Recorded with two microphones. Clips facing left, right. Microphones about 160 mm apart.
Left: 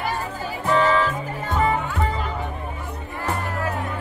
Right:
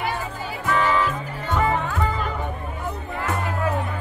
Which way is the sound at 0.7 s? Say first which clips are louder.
Left 2 dB; 30° left (ahead or behind).